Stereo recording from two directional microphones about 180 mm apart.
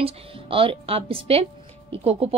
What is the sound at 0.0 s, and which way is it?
Speech, 30° right (ahead or behind).